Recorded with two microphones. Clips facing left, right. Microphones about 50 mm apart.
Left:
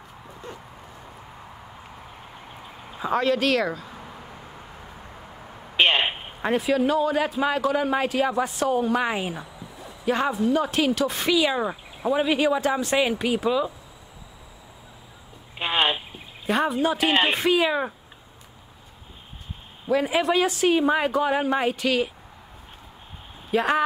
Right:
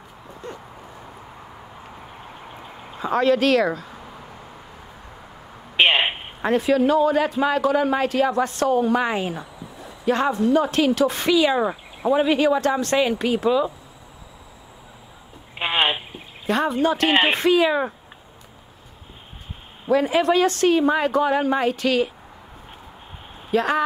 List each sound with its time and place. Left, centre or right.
0.3 s a sound: centre
3.0 s speech: centre
5.8 s a sound: centre
6.4 s a man's voice: centre
15.6 s a sound: centre
16.4 s a man's voice: centre
17.1 s speech: right
17.4 s a man's voice: centre
19.9 s a man's voice: centre
23.5 s speech: centre